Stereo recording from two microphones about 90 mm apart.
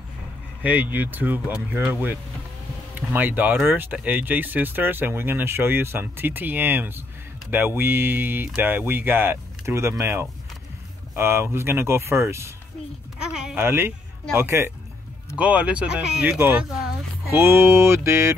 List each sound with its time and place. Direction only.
0.6 s speech: 15° right (ahead or behind)
13.2 s speech: 5° right (ahead or behind)
13.6 s speech: 25° right (ahead or behind)
15.3 s speech: 15° right (ahead or behind)
16.3 s speech: 25° right (ahead or behind)